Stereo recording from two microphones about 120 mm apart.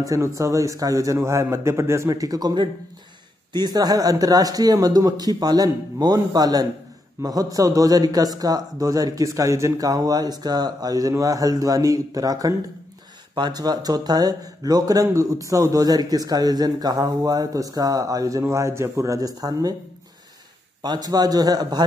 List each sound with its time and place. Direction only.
0.0 s a man's voice: 25° right (ahead or behind)
20.8 s a man's voice: 35° right (ahead or behind)